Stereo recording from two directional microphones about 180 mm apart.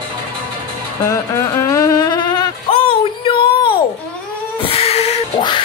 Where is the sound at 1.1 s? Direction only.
15° left (ahead or behind).